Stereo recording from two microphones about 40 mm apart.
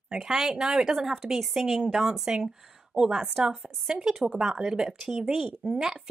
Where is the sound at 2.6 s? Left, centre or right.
Centre.